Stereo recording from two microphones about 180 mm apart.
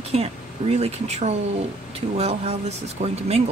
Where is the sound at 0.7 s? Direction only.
35° right (ahead or behind).